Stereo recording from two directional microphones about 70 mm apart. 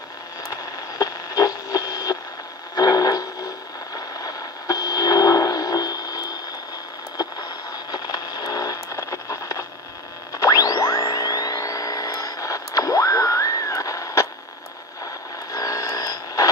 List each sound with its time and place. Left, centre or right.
0.5 s radio: left
7.2 s vehicle: left
8.8 s a sound: left
10.3 s music: left
15.5 s vehicle: left